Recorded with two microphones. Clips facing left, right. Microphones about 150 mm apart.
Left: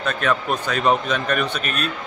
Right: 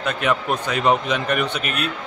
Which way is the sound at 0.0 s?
15° right (ahead or behind).